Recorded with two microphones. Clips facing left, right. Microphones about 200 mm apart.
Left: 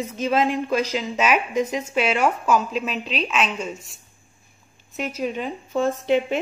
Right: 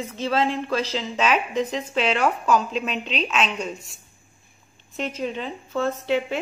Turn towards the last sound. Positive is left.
turn(degrees=15)  # may be behind; listen again after turning